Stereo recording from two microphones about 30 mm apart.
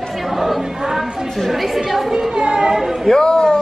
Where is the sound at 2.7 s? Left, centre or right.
Centre.